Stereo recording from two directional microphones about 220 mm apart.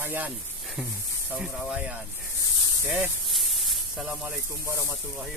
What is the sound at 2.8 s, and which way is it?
Snake, 10° right (ahead or behind).